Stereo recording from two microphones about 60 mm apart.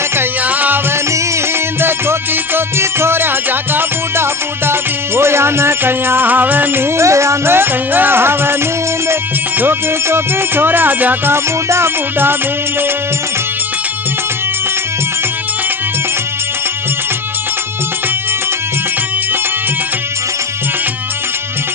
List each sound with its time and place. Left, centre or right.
0.2 s music: right
1.8 s music: right
7.0 s music: right
9.6 s speech: right
11.3 s music: right